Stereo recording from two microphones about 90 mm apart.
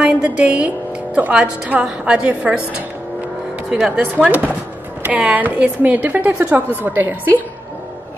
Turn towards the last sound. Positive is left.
turn(degrees=-20)  # may be behind; listen again after turning